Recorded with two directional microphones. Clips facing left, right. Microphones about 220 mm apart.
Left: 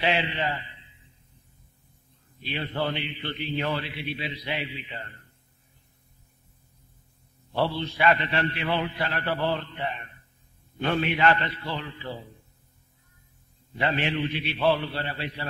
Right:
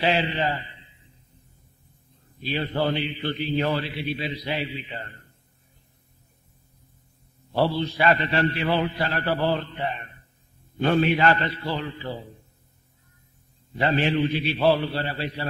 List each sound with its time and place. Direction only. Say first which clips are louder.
0.0 s a man's voice: right 3 dB; 40° right (ahead or behind)
2.4 s a man's voice: right 4 dB; 40° right (ahead or behind)
7.5 s a man's voice: right 4 dB; 40° right (ahead or behind)
13.7 s a man's voice: right 5 dB; 35° right (ahead or behind)